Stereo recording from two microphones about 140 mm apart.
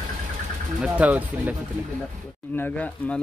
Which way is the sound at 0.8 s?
10° right (ahead or behind).